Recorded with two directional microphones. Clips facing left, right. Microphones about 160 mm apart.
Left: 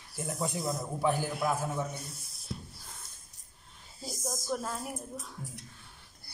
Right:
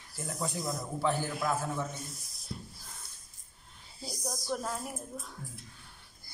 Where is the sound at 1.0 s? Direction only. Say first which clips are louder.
Left 2 dB; 15° left (ahead or behind).